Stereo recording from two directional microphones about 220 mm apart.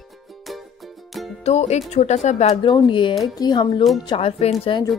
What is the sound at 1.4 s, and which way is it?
Speech, 30° left (ahead or behind).